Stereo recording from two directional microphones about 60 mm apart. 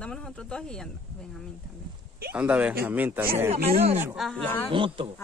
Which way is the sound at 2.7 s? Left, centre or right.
Right.